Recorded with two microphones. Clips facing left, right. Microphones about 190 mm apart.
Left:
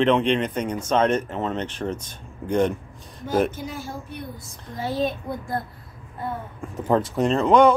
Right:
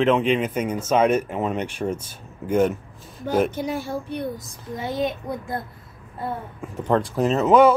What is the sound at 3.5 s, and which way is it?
Speech, 65° right (ahead or behind).